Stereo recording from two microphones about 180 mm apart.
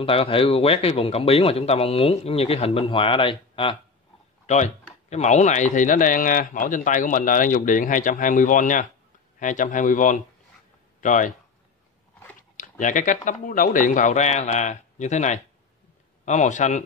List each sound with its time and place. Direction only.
0.0 s a man's voice: 30° left (ahead or behind)
4.5 s speech: 40° left (ahead or behind)
12.4 s a man's voice: 45° left (ahead or behind)